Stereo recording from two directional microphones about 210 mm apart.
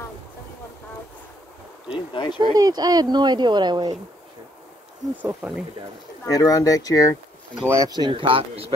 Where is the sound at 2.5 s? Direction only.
20° right (ahead or behind).